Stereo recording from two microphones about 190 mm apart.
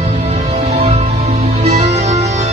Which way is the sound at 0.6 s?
35° right (ahead or behind).